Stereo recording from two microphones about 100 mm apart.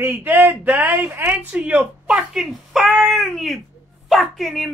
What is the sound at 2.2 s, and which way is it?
Speech, 5° right (ahead or behind).